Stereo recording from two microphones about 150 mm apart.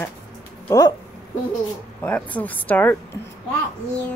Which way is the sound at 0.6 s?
20° left (ahead or behind).